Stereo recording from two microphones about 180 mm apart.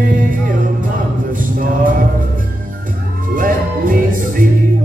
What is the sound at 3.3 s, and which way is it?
Music, 50° right (ahead or behind).